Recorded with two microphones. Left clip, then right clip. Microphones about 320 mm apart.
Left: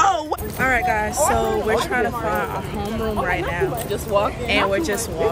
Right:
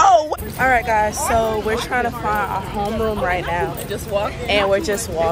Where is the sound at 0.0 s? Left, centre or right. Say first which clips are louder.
Right 5 dB; centre.